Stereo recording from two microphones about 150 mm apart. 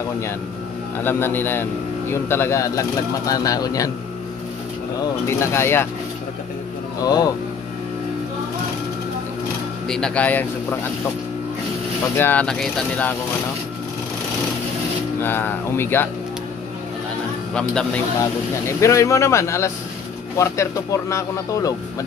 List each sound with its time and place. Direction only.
0.9 s a man's voice: 15° left (ahead or behind)
5.0 s a man's voice: 20° left (ahead or behind)
7.0 s speech: 25° left (ahead or behind)
9.8 s a man's voice: 5° left (ahead or behind)
12.2 s a man's voice: 10° left (ahead or behind)
15.2 s a man's voice: 15° left (ahead or behind)
17.6 s a man's voice: 5° left (ahead or behind)
18.8 s speech: 20° left (ahead or behind)